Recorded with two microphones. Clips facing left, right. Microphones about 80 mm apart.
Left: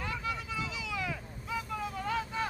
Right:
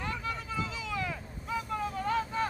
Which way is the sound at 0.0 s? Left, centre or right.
Right.